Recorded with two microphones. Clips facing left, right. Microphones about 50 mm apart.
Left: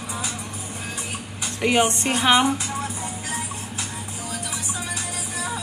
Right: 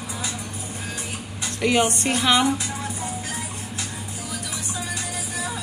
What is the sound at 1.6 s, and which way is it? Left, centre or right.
Speech, left.